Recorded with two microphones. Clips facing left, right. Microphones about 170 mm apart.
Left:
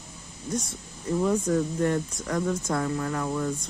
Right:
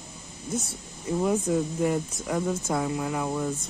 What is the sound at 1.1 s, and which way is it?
Speech, 10° right (ahead or behind).